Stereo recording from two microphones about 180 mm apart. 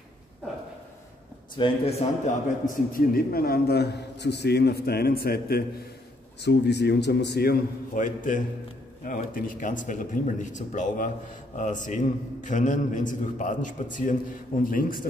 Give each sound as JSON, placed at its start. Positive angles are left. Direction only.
{"t": 1.6, "sound": "a man's voice", "side_deg": 35}
{"t": 6.4, "sound": "a man's voice", "side_deg": 70}